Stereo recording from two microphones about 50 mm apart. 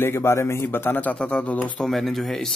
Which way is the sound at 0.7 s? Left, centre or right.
Left.